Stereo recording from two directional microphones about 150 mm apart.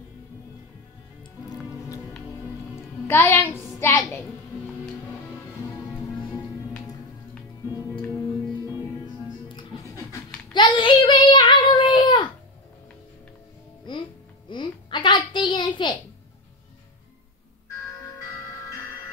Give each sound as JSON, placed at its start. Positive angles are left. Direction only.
{"t": 3.1, "sound": "a child's voice", "side_deg": 15}
{"t": 8.6, "sound": "music", "side_deg": 25}
{"t": 10.5, "sound": "child singing", "side_deg": 30}
{"t": 13.9, "sound": "music", "side_deg": 35}
{"t": 14.5, "sound": "a sound", "side_deg": 30}